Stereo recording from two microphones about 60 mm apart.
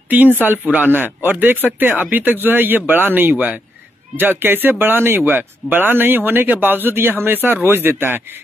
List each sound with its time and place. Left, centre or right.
0.4 s speech: right